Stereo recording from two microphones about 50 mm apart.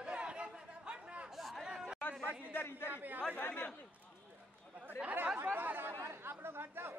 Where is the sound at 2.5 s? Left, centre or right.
Left.